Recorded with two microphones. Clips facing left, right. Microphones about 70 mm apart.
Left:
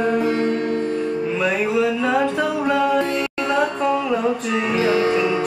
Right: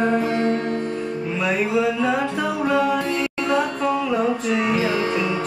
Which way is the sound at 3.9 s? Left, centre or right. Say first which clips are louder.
Left 2 dB; centre.